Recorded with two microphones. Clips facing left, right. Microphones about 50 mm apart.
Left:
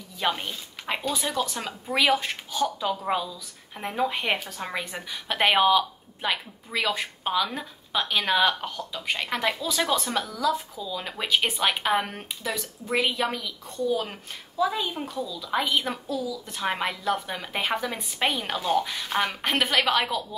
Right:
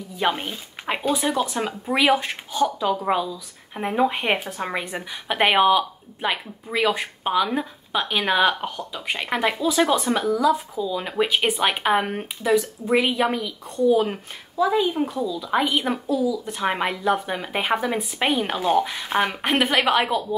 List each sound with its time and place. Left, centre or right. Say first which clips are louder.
0.2 s a woman's voice: right 4 dB; centre